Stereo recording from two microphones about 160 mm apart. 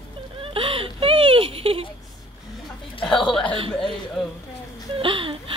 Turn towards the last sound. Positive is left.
turn(degrees=-35)  # may be behind; listen again after turning